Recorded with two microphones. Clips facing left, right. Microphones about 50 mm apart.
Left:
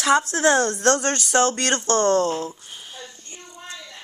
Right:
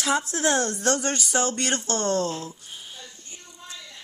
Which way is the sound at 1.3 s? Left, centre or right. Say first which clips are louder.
Left 7 dB; left.